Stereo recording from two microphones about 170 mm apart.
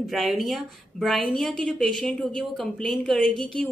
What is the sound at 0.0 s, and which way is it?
A woman's voice, centre (ahead or behind).